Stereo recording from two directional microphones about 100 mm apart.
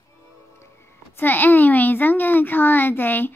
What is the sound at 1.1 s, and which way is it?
A child's voice, 20° left (ahead or behind).